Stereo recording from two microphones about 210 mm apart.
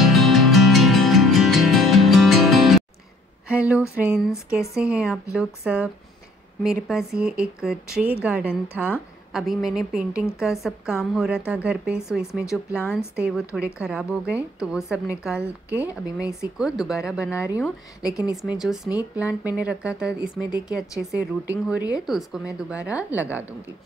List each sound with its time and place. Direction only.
0.0 s music: centre (ahead or behind)
3.4 s a woman's voice: 5° right (ahead or behind)
12.4 s a woman's voice: 10° left (ahead or behind)
13.1 s speech: 5° right (ahead or behind)
17.6 s a woman's voice: 15° left (ahead or behind)
18.3 s a woman's voice: centre (ahead or behind)